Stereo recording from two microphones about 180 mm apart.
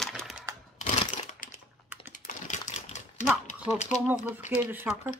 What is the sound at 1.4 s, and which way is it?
Typing, 50° left (ahead or behind).